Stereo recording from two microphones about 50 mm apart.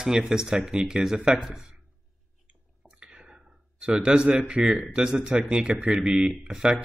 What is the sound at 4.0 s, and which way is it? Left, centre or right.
Speech, centre.